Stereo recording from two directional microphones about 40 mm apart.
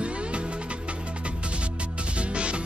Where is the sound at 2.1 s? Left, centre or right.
Right.